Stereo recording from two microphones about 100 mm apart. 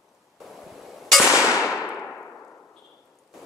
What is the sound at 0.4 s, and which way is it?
Clang, centre (ahead or behind).